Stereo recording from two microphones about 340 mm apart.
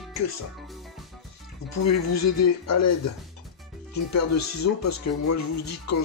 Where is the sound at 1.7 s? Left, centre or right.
Left.